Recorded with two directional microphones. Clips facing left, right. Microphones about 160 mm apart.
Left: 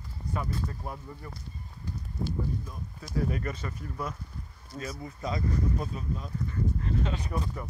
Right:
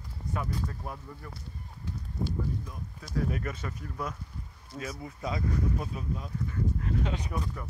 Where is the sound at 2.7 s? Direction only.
Centre (ahead or behind).